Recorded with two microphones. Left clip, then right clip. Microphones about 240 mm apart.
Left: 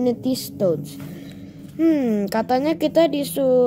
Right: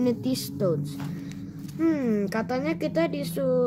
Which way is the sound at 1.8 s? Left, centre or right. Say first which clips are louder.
Left 6 dB; centre.